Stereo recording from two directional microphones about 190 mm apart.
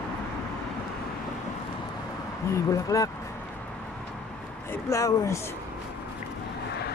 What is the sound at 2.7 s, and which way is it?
Speech, 15° left (ahead or behind).